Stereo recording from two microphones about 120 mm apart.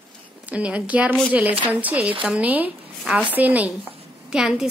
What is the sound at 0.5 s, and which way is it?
A woman's voice, 10° right (ahead or behind).